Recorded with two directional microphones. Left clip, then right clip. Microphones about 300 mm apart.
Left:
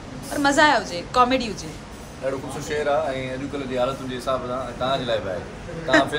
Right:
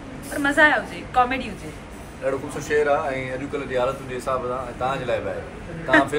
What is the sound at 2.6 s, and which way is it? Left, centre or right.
A man's voice, centre.